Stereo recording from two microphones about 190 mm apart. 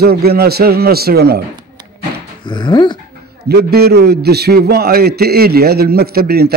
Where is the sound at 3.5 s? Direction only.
55° right (ahead or behind).